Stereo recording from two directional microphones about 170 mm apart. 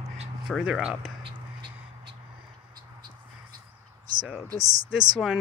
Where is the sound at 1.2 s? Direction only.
30° right (ahead or behind).